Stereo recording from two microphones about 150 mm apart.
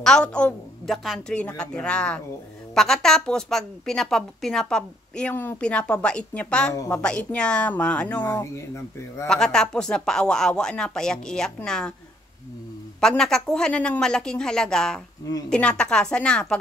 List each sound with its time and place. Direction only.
0.0 s a woman's voice: 5° left (ahead or behind)
8.3 s a woman's voice: 20° left (ahead or behind)
9.3 s a woman's voice: 5° left (ahead or behind)
13.0 s a woman's voice: 5° left (ahead or behind)